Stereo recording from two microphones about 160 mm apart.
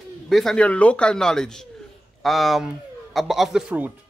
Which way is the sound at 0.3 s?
Centre (ahead or behind).